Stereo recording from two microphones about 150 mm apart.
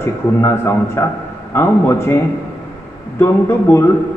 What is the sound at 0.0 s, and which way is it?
A man's voice, 15° left (ahead or behind).